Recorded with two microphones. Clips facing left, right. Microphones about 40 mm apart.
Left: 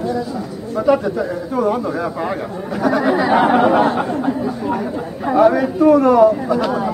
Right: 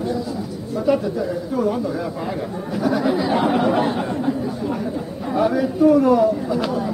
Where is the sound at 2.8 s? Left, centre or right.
Left.